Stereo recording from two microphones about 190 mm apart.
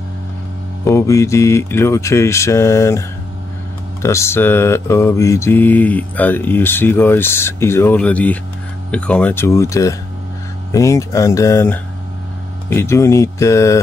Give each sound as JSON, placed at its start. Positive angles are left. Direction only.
{"t": 0.8, "sound": "mantra", "side_deg": 15}